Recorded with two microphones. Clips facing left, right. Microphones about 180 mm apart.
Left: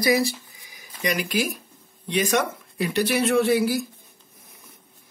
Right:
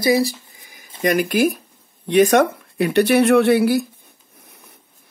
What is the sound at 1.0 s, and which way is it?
Speech, 55° right (ahead or behind).